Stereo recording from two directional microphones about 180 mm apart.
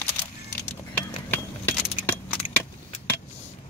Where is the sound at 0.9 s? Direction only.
10° left (ahead or behind).